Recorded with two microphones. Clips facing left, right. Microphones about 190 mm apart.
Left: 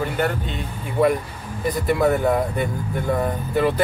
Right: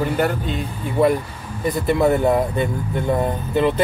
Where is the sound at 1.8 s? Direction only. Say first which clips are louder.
Right 2 dB; 25° right (ahead or behind).